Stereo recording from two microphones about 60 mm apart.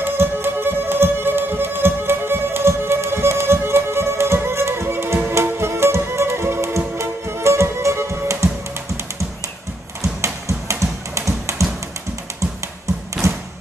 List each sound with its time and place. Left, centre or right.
0.0 s music: right
10.0 s tap: right
13.2 s thump: right